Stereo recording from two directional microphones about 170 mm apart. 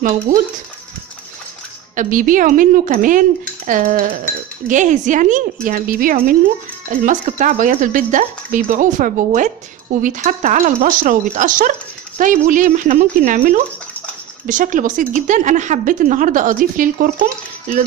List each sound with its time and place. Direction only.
0.3 s speech: 50° right (ahead or behind)
2.0 s speech: 50° right (ahead or behind)